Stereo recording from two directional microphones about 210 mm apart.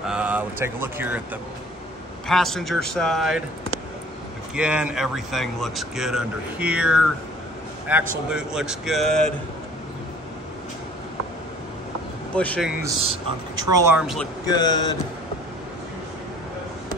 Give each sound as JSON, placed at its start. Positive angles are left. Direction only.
{"t": 0.0, "sound": "speech", "side_deg": -5}
{"t": 4.6, "sound": "speech", "side_deg": -5}
{"t": 12.4, "sound": "speech", "side_deg": 5}
{"t": 13.6, "sound": "speech", "side_deg": -15}
{"t": 13.9, "sound": "speech", "side_deg": 0}
{"t": 14.4, "sound": "speech", "side_deg": 20}